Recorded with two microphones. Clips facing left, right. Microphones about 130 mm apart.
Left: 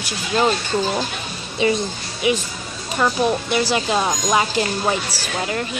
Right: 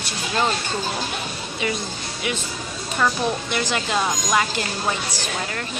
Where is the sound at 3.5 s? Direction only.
20° left (ahead or behind).